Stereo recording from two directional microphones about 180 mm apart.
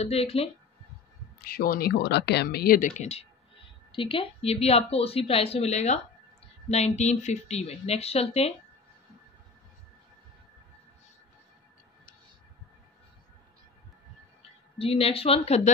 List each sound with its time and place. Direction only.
0.0 s speech: 35° left (ahead or behind)
1.4 s speech: 55° left (ahead or behind); by 8.5 s 35° left (ahead or behind)
14.8 s speech: 30° left (ahead or behind)